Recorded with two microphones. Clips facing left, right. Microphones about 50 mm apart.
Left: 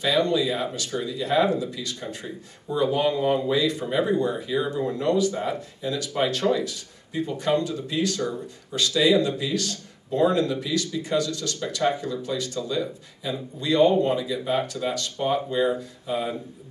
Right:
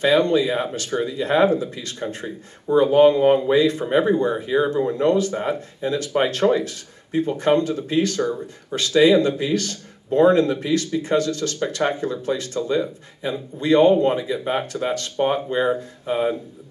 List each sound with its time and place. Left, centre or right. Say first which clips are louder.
0.0 s speech: right 5 dB; right